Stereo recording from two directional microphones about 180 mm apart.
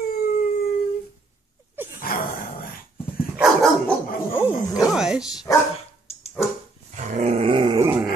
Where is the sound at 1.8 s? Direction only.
10° right (ahead or behind).